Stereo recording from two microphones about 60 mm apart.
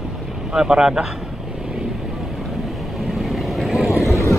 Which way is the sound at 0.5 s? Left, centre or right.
Centre.